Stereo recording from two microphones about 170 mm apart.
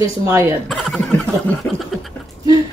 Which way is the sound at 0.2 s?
15° right (ahead or behind).